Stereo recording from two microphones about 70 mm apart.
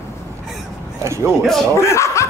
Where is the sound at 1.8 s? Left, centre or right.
Left.